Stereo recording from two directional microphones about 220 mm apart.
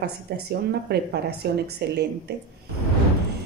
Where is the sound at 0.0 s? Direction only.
45° right (ahead or behind).